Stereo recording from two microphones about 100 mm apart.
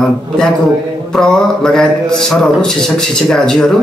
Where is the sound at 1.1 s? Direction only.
5° left (ahead or behind).